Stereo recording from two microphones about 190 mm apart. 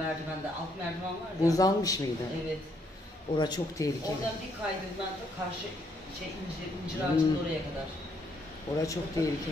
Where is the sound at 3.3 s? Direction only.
20° left (ahead or behind).